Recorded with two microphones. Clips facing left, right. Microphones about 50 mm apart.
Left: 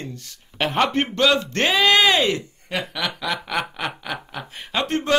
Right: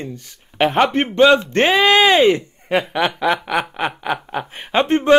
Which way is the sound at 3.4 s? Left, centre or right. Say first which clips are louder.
Right 5 dB; centre.